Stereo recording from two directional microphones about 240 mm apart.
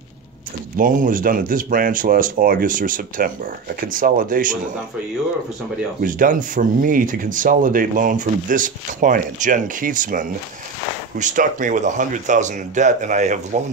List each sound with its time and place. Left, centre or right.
0.7 s speech: right
6.0 s speech: right